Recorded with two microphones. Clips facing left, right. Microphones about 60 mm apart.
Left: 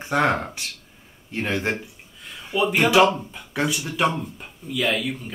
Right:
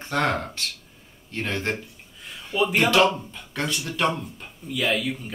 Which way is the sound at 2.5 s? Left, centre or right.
Centre.